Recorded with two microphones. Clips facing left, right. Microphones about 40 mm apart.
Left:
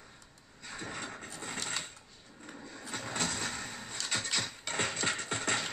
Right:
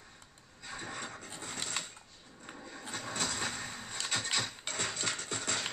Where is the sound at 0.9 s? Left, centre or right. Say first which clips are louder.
Left 1 dB; centre.